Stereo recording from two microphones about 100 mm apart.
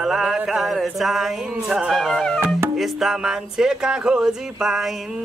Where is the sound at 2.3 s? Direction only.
20° right (ahead or behind).